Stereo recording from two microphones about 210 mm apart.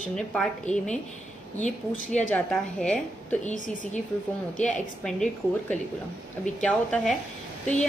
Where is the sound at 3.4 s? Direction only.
35° left (ahead or behind).